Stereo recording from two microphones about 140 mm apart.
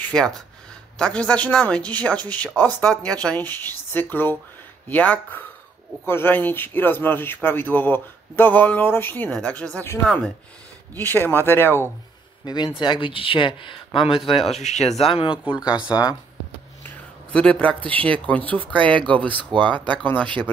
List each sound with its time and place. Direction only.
0.0 s a sound: 5° left (ahead or behind)
0.9 s speech: 5° left (ahead or behind)
12.4 s speech: 30° left (ahead or behind)
14.6 s speech: 55° left (ahead or behind)
15.3 s speech: 5° right (ahead or behind)
15.8 s speech: 30° left (ahead or behind)
16.8 s a sound: 10° left (ahead or behind)
17.8 s speech: 10° left (ahead or behind)